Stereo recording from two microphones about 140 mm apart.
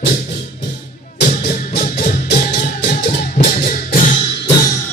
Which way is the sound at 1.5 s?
75° left (ahead or behind).